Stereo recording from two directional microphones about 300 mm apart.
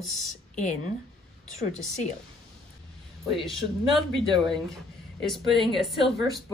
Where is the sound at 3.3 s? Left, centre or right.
Centre.